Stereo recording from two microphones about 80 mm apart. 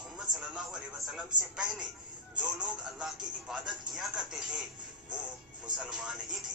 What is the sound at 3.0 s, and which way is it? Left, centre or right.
Speech, centre.